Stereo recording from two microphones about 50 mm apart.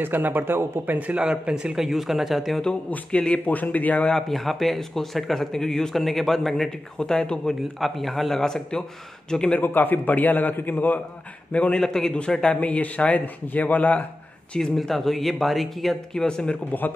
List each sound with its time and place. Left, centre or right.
0.0 s speech: right
0.9 s speech: right
1.2 s speech: centre
1.8 s a man's voice: centre
3.1 s speech: left
3.4 s a man's voice: left
4.1 s a man's voice: centre
7.8 s a man's voice: centre
9.6 s a man's voice: left
11.7 s a man's voice: centre
12.5 s speech: left
14.8 s a man's voice: centre
16.1 s a man's voice: centre